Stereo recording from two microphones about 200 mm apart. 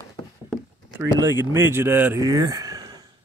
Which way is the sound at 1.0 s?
15° right (ahead or behind).